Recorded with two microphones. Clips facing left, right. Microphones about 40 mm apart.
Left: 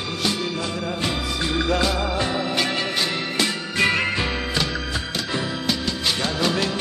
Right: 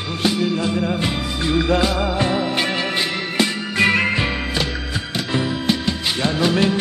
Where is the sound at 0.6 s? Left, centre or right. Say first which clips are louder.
Right 5 dB; centre.